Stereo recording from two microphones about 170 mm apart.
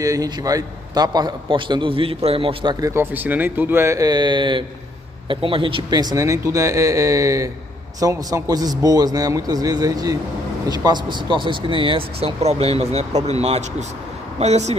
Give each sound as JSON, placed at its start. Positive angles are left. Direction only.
{"t": 0.0, "sound": "a man's voice", "side_deg": -20}